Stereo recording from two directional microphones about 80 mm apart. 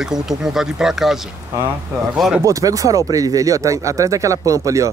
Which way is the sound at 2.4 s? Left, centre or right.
Right.